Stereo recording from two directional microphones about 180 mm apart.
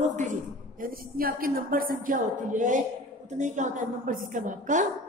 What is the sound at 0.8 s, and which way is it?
A woman's voice, 55° right (ahead or behind).